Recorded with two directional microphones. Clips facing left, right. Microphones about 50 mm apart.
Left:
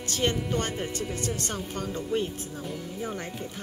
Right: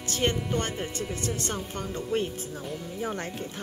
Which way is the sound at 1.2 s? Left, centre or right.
Right.